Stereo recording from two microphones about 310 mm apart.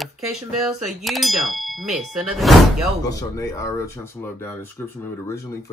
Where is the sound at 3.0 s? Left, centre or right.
Centre.